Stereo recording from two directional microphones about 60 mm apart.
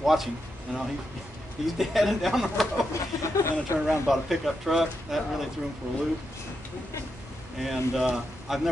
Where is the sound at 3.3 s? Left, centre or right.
Left.